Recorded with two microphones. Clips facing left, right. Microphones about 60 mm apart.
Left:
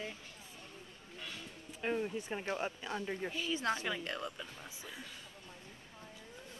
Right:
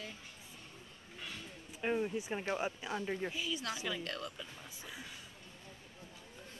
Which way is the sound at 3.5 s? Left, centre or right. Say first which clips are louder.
Left 5 dB; left.